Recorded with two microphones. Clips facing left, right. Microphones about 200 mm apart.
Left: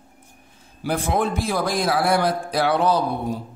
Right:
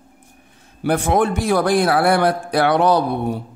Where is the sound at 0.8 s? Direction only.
65° right (ahead or behind).